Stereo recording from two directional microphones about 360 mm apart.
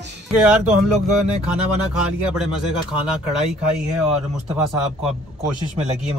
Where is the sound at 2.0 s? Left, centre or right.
Centre.